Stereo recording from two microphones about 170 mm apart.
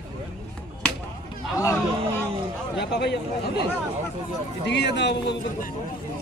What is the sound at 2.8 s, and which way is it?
Speech, 80° left.